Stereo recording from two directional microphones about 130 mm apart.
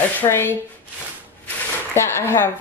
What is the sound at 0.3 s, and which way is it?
Speech, 20° left (ahead or behind).